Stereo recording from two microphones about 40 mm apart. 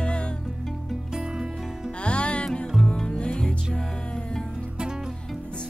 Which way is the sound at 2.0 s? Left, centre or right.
Left.